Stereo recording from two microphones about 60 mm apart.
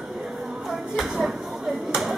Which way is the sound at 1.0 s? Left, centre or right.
Centre.